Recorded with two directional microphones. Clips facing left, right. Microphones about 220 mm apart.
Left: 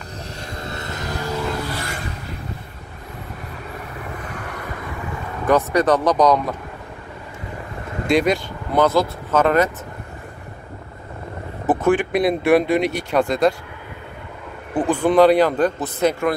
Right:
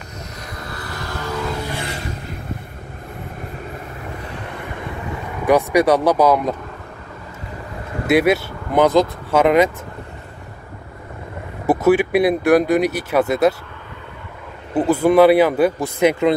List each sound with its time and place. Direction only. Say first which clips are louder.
0.5 s vehicle: left 2 dB; 25° left (ahead or behind)
1.7 s vehicle: right 1 dB; 15° right (ahead or behind)
5.4 s speech: right 2 dB; 10° right (ahead or behind)
8.1 s speech: right 3 dB; 5° right (ahead or behind)
11.6 s speech: right 3 dB; 10° right (ahead or behind)
14.7 s speech: right 3 dB; 5° right (ahead or behind)